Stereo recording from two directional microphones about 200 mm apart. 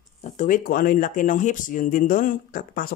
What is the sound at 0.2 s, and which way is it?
Speech, 40° left (ahead or behind).